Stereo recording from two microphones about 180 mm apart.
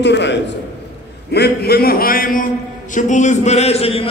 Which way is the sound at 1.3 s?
60° left (ahead or behind).